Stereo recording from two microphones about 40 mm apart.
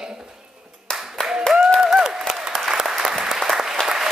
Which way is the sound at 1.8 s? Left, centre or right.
Centre.